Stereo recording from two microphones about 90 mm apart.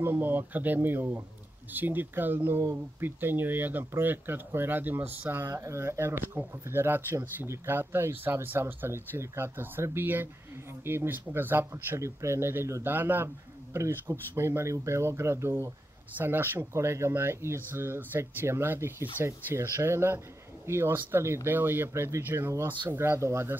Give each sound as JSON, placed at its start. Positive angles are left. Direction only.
{"t": 0.0, "sound": "speech", "side_deg": -25}